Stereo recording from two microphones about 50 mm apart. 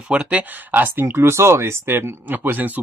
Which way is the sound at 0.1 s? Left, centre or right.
Right.